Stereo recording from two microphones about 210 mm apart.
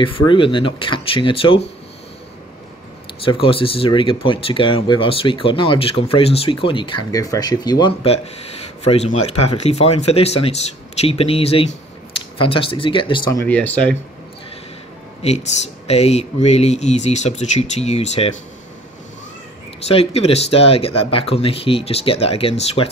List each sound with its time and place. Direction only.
0.0 s speech: 25° left (ahead or behind)
3.2 s speech: 25° left (ahead or behind); by 13.9 s 5° left (ahead or behind)
15.2 s speech: 30° left (ahead or behind)
19.9 s speech: 30° left (ahead or behind)